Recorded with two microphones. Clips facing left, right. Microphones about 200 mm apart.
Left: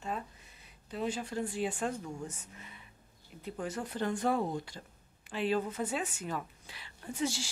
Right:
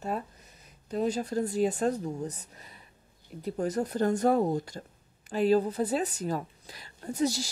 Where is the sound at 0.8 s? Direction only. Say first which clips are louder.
Right 7 dB; 40° right (ahead or behind).